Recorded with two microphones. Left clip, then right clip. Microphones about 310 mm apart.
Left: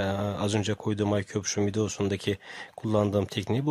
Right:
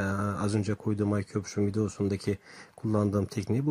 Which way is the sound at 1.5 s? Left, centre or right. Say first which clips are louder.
Left 2 dB; left.